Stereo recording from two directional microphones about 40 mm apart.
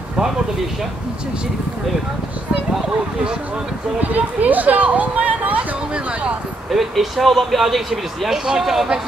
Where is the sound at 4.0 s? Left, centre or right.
Right.